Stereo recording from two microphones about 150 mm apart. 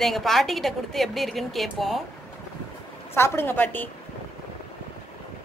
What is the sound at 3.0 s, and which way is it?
Speech, 15° left (ahead or behind).